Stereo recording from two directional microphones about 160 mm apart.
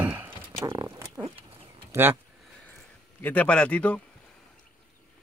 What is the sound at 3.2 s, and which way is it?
Speech, 10° left (ahead or behind).